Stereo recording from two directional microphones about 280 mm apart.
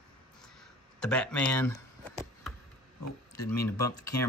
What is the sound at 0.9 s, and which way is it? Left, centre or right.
Speech, centre.